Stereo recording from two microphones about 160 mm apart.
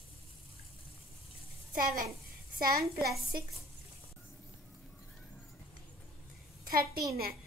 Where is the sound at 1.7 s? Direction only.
60° right (ahead or behind).